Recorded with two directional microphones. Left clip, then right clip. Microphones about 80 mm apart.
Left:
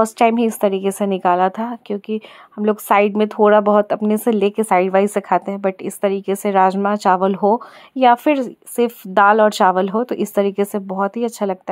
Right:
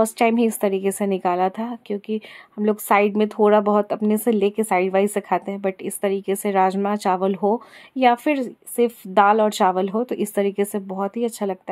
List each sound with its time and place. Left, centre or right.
0.0 s speech: centre